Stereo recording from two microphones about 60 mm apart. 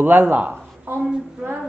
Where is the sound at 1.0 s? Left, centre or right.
Centre.